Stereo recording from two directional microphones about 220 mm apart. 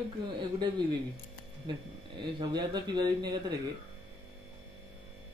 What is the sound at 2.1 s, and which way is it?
A man's voice, 20° right (ahead or behind).